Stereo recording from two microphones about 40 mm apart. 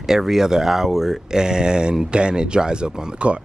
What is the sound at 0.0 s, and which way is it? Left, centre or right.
Speech, centre.